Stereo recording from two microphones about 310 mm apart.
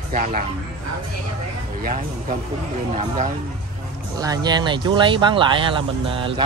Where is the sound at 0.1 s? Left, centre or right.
Right.